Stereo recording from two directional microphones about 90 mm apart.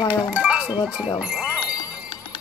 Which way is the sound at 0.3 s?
10° right (ahead or behind).